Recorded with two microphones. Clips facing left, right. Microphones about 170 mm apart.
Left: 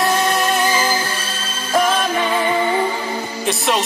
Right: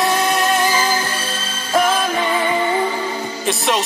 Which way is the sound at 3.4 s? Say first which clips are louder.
Even; centre (ahead or behind).